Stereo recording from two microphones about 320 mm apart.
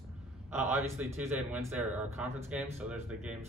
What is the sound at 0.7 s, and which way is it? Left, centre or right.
Speech, centre.